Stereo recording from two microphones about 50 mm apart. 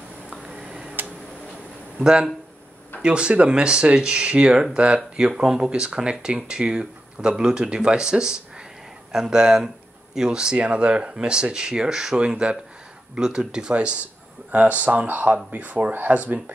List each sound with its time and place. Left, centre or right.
0.3 s a sound: centre
0.7 s tick-tock: right
2.0 s speech: centre
14.5 s speech: right